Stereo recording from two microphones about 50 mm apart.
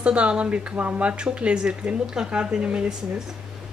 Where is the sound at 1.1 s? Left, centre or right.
Right.